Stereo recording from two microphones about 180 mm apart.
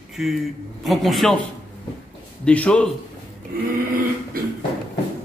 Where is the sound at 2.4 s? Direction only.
5° left (ahead or behind).